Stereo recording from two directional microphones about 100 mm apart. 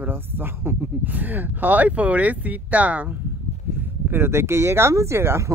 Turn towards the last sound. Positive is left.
turn(degrees=-25)  # may be behind; listen again after turning